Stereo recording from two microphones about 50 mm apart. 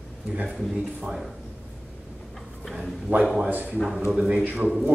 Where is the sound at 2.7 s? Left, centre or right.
Centre.